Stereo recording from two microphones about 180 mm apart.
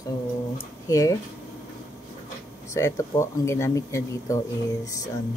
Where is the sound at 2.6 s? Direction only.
15° left (ahead or behind).